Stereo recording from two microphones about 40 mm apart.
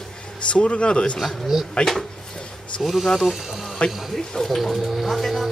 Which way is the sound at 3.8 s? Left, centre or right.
Centre.